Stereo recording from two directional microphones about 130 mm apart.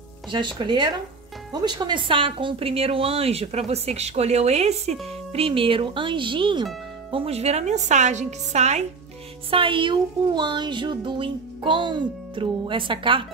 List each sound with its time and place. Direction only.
0.3 s speech: 35° right (ahead or behind); by 8.8 s 60° right (ahead or behind)
9.5 s speech: 40° right (ahead or behind)